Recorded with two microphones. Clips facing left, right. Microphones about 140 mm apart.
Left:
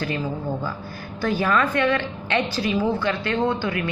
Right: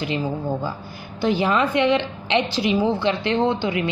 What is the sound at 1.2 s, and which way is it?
A woman's voice, 20° right (ahead or behind).